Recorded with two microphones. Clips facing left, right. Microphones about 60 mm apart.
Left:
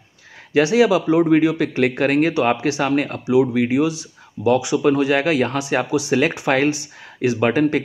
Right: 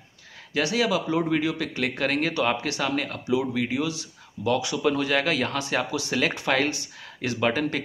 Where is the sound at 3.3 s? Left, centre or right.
Centre.